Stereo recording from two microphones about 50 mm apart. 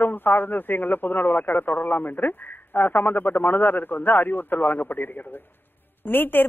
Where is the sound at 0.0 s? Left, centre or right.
Left.